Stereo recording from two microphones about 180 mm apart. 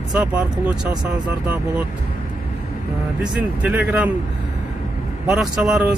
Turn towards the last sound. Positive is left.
turn(degrees=-5)  # may be behind; listen again after turning